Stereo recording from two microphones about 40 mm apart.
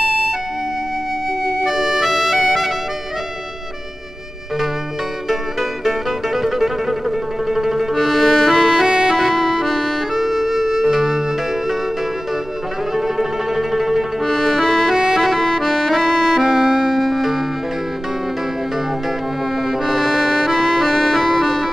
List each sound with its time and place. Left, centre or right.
1.6 s music: centre
5.3 s music: centre
8.0 s music: centre
8.8 s music: centre
9.1 s music: centre
10.1 s music: centre
12.9 s music: centre
14.2 s music: centre
16.3 s music: centre
19.9 s music: centre